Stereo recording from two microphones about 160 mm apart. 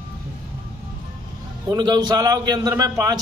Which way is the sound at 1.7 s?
25° right (ahead or behind).